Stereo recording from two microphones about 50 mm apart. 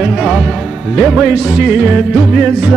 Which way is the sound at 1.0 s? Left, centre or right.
Centre.